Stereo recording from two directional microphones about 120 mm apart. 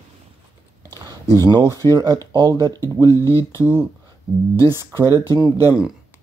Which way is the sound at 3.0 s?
20° right (ahead or behind).